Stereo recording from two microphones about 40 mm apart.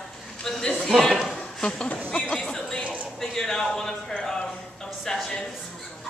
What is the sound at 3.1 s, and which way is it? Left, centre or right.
Speech, centre.